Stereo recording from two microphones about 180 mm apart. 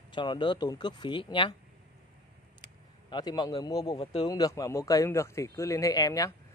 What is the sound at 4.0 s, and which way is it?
Speech, 35° left (ahead or behind).